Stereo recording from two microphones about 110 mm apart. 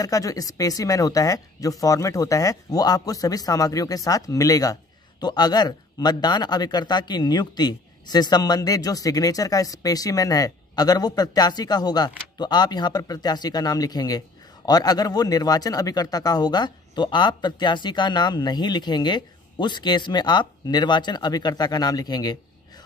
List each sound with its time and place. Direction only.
0.0 s speech: 30° left (ahead or behind)